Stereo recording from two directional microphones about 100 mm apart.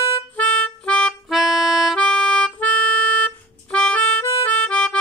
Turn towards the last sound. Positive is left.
turn(degrees=10)  # may be behind; listen again after turning